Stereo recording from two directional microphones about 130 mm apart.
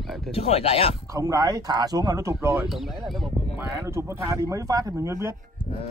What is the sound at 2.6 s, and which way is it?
Speech, centre (ahead or behind).